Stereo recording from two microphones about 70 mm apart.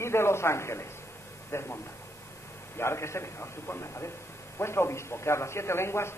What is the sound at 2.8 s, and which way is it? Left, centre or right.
A man's voice, left.